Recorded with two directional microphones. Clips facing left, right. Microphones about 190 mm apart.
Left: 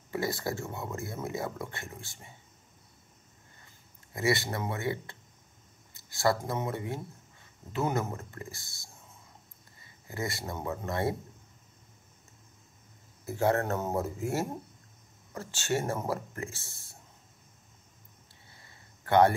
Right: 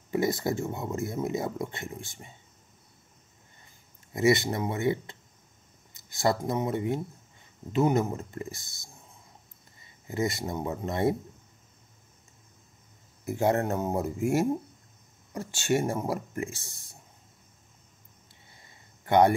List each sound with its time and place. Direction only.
0.1 s speech: 20° right (ahead or behind)
4.1 s speech: 20° right (ahead or behind)
10.0 s speech: 20° right (ahead or behind)
13.2 s speech: 15° right (ahead or behind)
18.7 s a sound: 15° right (ahead or behind)